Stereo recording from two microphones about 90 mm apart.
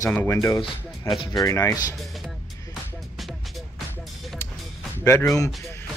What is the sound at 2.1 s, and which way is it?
Music, centre (ahead or behind).